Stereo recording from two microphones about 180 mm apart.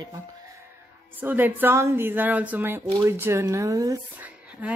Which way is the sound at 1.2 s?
10° right (ahead or behind).